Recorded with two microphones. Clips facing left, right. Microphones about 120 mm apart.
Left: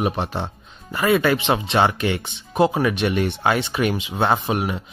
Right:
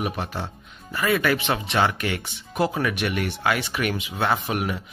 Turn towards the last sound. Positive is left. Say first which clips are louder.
# left 3 dB
turn(degrees=25)  # may be behind; listen again after turning